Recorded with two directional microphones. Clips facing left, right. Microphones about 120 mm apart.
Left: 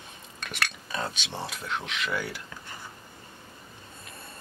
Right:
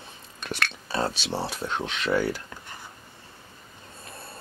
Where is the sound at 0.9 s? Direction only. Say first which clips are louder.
Right 6 dB; 35° right (ahead or behind).